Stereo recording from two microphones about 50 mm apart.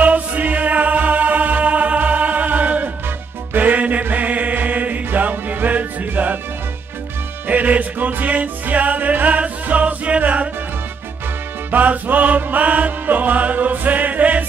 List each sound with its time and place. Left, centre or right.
0.0 s music: right
7.4 s music: right
11.7 s music: right